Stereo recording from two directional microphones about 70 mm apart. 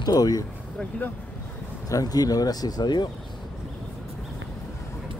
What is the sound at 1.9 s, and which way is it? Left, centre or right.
Speech, left.